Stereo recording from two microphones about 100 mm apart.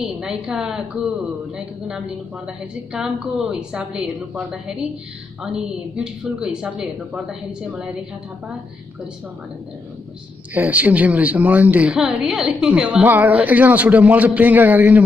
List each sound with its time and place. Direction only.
0.0 s a woman's voice: 10° right (ahead or behind)
1.9 s a woman's voice: 10° right (ahead or behind)
10.5 s a woman's voice: 15° right (ahead or behind)